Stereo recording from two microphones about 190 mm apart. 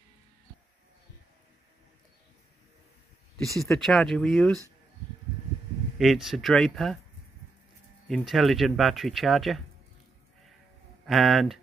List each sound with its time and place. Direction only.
3.7 s speech: centre (ahead or behind)
5.9 s speech: centre (ahead or behind)
8.1 s speech: centre (ahead or behind)
11.1 s speech: centre (ahead or behind)